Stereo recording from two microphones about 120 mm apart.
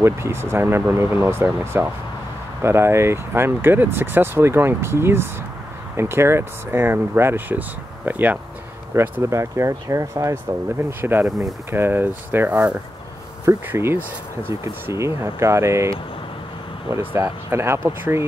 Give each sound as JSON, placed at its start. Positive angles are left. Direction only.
{"t": 0.0, "sound": "speech", "side_deg": -20}
{"t": 16.9, "sound": "speech", "side_deg": -20}